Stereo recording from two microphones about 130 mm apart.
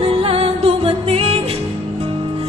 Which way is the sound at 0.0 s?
45° right (ahead or behind).